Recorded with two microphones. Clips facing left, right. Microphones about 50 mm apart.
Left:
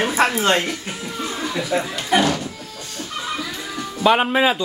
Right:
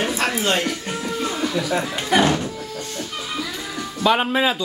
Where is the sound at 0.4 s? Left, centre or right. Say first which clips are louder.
Left 3 dB; left.